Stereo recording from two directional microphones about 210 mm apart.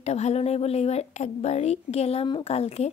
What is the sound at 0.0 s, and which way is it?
A woman's voice, 30° left (ahead or behind).